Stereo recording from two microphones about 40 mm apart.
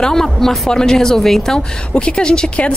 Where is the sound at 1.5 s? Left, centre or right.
Left.